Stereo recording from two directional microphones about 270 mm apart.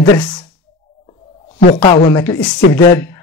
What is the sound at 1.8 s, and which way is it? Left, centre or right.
Speech, centre.